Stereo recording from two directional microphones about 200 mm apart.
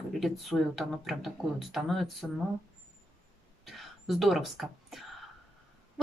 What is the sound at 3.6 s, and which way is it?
Speech, centre (ahead or behind).